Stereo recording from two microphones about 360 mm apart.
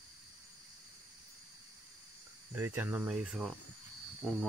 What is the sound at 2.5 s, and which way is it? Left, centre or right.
Speech, centre.